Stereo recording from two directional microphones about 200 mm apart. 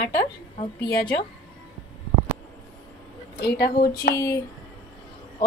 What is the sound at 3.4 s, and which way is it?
Speech, 55° left (ahead or behind).